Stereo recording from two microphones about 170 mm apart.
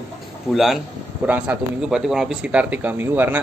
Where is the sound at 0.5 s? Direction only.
Centre (ahead or behind).